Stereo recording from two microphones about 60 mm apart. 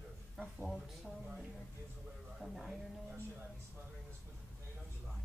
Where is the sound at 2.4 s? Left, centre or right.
Centre.